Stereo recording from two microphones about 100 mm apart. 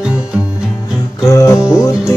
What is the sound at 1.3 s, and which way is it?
Music, 30° left (ahead or behind).